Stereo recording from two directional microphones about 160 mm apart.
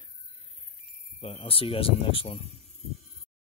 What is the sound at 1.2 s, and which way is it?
Speech, 35° left (ahead or behind).